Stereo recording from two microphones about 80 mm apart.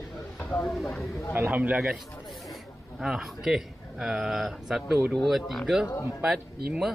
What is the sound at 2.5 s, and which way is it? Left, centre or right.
A man's voice, centre.